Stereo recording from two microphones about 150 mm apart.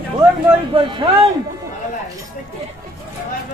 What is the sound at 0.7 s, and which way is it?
Speech, 35° right (ahead or behind).